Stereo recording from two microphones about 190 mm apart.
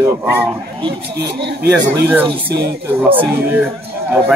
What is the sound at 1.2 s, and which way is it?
Speech, 65° right (ahead or behind).